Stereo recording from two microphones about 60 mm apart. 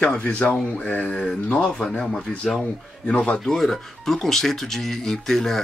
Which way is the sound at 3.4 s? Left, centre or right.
Centre.